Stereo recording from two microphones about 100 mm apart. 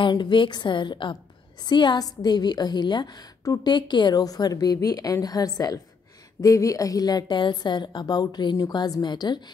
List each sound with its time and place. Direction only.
0.0 s a woman's voice: 50° left (ahead or behind)